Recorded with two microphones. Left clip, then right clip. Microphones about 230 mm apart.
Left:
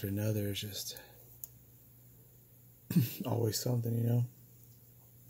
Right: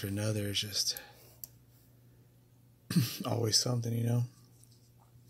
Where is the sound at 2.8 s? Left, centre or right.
Centre.